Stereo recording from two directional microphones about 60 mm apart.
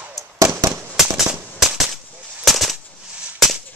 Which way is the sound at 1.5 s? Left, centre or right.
Centre.